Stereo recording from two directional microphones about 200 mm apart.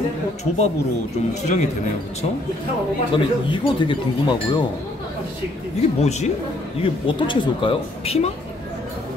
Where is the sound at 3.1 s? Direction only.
25° left (ahead or behind).